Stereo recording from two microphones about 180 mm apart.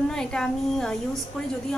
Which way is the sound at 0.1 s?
5° left (ahead or behind).